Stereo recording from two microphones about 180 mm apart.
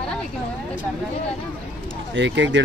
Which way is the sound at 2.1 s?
80° right.